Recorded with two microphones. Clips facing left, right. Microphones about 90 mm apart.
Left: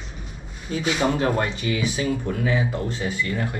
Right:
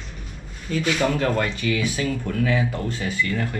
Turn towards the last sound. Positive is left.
turn(degrees=15)  # may be behind; listen again after turning